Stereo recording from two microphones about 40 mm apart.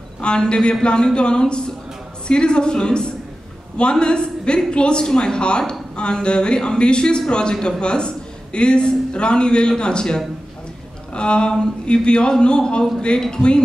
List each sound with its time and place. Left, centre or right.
0.2 s a man's voice: left